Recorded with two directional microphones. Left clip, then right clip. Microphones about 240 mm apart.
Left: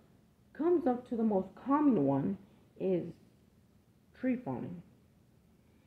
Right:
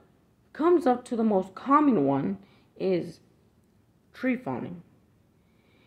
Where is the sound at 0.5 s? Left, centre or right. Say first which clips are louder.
Right 8 dB; right.